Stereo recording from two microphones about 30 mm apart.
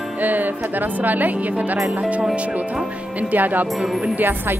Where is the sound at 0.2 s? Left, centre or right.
Right.